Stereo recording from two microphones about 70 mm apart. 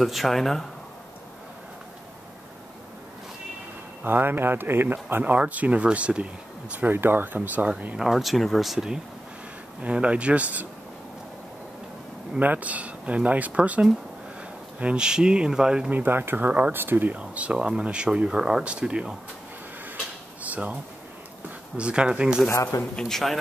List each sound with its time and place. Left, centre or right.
0.0 s speech: centre
4.0 s speech: right
8.0 s speech: centre; by 10.7 s right
12.4 s speech: right
15.9 s speech: right
17.2 s speech: centre
20.4 s a sound: right
21.7 s speech: centre
22.5 s a man's voice: left
22.9 s speech: centre